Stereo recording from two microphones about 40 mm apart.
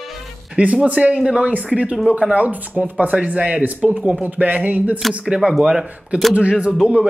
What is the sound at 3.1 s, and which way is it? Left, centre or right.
Speech, right.